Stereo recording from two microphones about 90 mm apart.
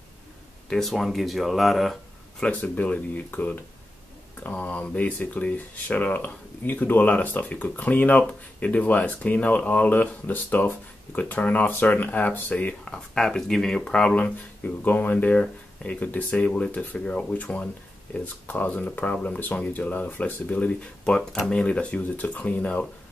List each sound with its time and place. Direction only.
0.7 s speech: 5° left (ahead or behind)
2.4 s speech: 20° left (ahead or behind)